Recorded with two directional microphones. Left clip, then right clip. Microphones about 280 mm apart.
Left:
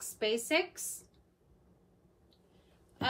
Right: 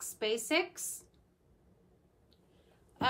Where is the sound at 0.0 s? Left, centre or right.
Centre.